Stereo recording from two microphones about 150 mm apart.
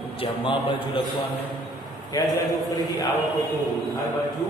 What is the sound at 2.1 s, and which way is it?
Speech, 25° left (ahead or behind).